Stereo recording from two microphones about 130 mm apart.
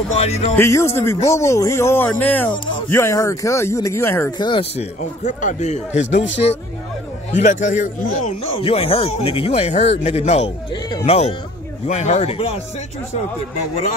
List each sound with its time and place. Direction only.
0.1 s speech: 55° left (ahead or behind)
0.6 s speech: 20° left (ahead or behind)
4.4 s speech: 40° left (ahead or behind)
4.7 s speech: 70° left (ahead or behind)
7.3 s a man's voice: 70° left (ahead or behind)
8.5 s speech: 45° left (ahead or behind)